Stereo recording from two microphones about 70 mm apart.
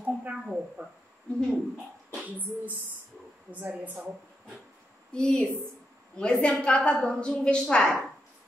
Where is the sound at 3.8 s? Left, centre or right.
Right.